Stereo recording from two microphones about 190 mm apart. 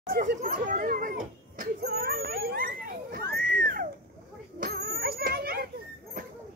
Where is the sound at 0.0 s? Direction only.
50° right (ahead or behind).